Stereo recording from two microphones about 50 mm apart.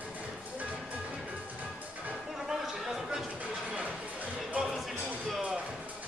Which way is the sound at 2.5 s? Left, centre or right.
Centre.